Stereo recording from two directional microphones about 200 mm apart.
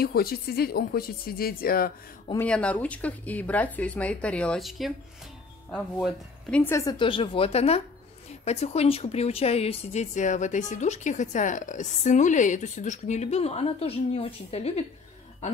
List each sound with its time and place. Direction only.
0.0 s speech: 50° left (ahead or behind)
2.3 s a woman's voice: 5° left (ahead or behind); by 14.9 s 30° left (ahead or behind)